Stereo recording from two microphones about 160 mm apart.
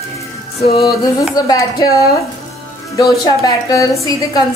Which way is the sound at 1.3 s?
25° left (ahead or behind).